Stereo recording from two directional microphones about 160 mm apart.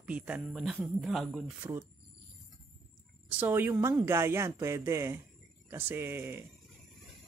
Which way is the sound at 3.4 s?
15° right (ahead or behind).